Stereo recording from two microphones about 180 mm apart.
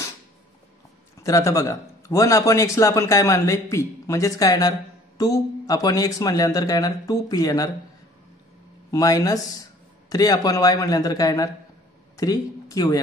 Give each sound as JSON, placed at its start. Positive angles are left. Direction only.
{"t": 1.2, "sound": "a man's voice", "side_deg": 20}
{"t": 8.9, "sound": "a man's voice", "side_deg": 20}